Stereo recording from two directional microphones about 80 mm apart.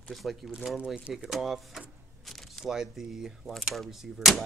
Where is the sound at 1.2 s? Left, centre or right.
Centre.